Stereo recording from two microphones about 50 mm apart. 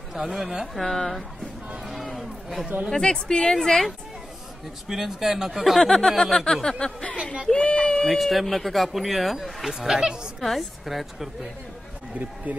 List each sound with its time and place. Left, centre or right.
0.1 s speech: centre
0.8 s speech: centre
1.9 s a sound: centre
2.9 s a woman's voice: centre
4.8 s a woman's voice: centre
8.1 s speech: centre
9.8 s a woman's voice: centre
10.4 s speech: centre
12.5 s speech: right